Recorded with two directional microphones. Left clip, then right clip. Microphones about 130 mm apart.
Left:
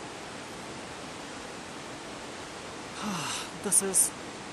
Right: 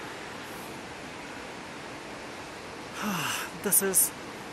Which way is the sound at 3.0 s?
15° right (ahead or behind).